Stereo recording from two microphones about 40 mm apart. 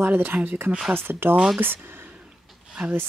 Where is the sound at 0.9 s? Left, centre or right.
Right.